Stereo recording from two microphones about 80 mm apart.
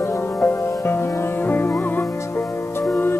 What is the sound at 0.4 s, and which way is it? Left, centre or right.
Music, left.